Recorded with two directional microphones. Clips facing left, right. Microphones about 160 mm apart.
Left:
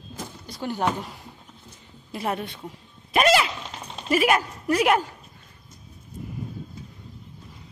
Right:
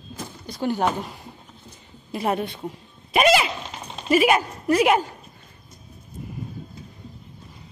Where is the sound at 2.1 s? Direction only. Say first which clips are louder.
Right 4 dB; 20° right (ahead or behind).